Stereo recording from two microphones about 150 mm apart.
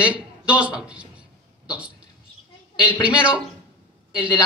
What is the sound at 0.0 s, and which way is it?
A woman's voice, 10° right (ahead or behind).